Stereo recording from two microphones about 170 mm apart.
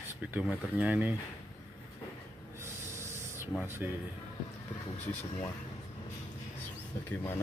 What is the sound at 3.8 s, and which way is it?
Music, 10° right (ahead or behind).